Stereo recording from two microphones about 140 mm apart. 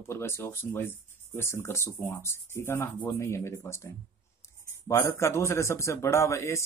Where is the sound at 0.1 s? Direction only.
20° left (ahead or behind).